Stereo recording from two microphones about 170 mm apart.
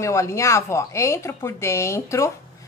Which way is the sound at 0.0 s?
15° left (ahead or behind).